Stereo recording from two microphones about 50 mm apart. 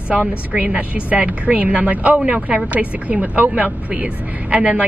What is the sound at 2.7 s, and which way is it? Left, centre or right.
Speech, right.